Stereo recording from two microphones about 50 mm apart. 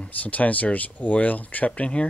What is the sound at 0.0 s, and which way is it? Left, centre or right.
Speech, left.